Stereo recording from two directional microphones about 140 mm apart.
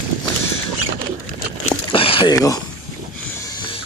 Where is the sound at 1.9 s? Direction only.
40° left (ahead or behind).